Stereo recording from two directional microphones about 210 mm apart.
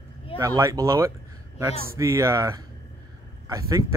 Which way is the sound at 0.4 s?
15° right (ahead or behind).